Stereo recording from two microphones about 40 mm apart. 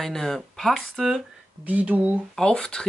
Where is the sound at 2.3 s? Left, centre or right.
Left.